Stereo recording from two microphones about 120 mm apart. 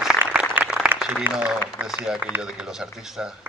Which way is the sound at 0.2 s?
10° right (ahead or behind).